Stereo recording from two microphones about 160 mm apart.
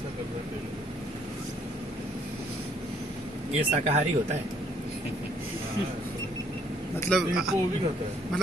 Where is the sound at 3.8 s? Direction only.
40° right (ahead or behind).